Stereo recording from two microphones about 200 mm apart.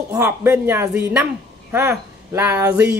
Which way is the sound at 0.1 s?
10° right (ahead or behind).